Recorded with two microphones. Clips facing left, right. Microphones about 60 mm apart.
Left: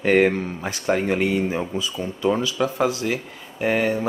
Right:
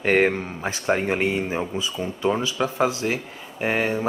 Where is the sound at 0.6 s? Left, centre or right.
Right.